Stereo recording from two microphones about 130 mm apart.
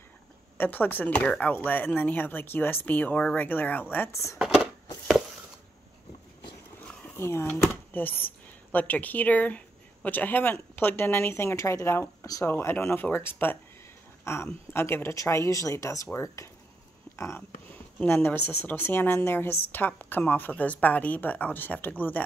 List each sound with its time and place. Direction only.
0.6 s speech: 15° left (ahead or behind)
7.2 s speech: 20° left (ahead or behind)
17.7 s speech: 15° left (ahead or behind)